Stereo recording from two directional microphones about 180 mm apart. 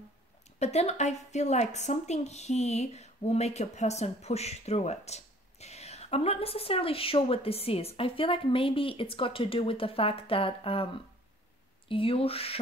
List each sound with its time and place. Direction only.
0.6 s speech: 40° left (ahead or behind)
11.9 s speech: 30° left (ahead or behind)